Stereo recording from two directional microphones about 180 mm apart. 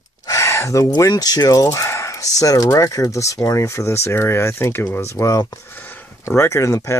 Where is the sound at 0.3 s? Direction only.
15° left (ahead or behind).